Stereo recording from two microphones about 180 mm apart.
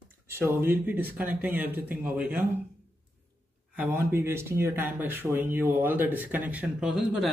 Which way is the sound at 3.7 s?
15° right (ahead or behind).